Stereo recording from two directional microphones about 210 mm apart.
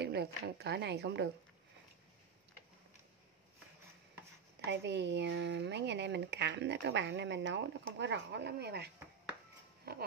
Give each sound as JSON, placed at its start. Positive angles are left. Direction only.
{"t": 0.0, "sound": "speech", "side_deg": -50}
{"t": 4.6, "sound": "speech", "side_deg": -55}